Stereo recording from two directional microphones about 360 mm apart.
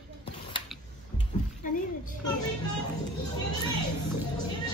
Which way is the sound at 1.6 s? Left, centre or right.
Left.